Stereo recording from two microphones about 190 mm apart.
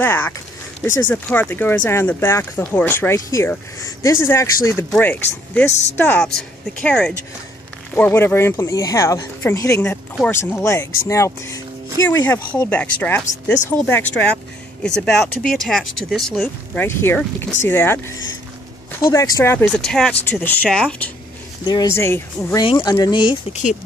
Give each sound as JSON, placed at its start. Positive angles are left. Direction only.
{"t": 0.0, "sound": "speech", "side_deg": 10}
{"t": 19.6, "sound": "speech", "side_deg": 5}
{"t": 21.6, "sound": "speech", "side_deg": 20}